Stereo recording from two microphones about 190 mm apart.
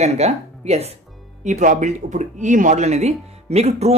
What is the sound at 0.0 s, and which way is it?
Speech, 35° right (ahead or behind).